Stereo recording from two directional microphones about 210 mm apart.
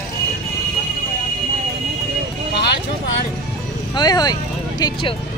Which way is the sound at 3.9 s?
20° left (ahead or behind).